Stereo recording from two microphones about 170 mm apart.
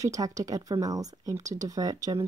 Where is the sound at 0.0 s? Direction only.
20° right (ahead or behind).